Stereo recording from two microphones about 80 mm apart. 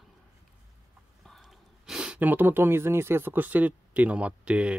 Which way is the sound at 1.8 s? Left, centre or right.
Centre.